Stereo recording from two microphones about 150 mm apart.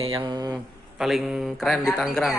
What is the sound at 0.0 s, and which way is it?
Speech, 35° right (ahead or behind).